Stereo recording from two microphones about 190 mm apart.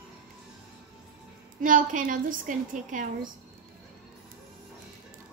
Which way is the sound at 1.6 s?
45° right (ahead or behind).